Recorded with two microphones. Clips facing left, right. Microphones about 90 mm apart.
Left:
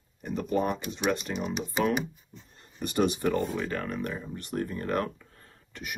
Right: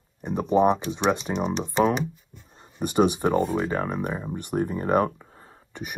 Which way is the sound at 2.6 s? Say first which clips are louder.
Right 5 dB; 15° right (ahead or behind).